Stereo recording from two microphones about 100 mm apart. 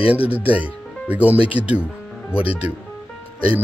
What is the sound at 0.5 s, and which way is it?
Speech, 15° right (ahead or behind).